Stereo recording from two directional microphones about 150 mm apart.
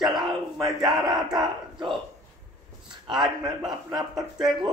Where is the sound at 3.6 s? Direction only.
Centre (ahead or behind).